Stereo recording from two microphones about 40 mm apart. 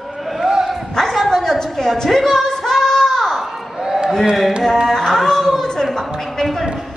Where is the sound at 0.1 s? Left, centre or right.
Centre.